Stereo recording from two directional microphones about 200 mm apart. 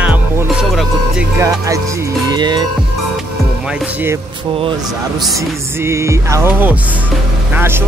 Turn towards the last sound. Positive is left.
turn(degrees=-10)  # may be behind; listen again after turning